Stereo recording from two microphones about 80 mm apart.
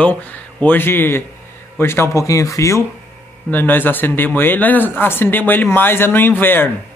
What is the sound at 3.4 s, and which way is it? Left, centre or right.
Speech, left.